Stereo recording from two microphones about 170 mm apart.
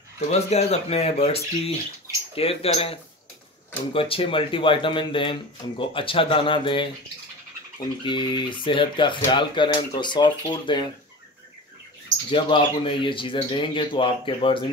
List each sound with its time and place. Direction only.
0.3 s speech: 40° left (ahead or behind)
8.0 s speech: 25° left (ahead or behind)
12.3 s speech: 30° left (ahead or behind)